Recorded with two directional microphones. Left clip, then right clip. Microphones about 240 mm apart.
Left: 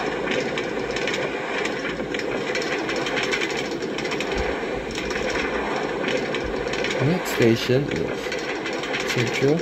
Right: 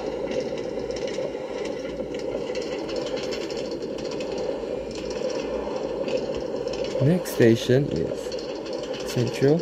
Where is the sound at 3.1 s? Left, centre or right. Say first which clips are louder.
Left 5 dB; centre.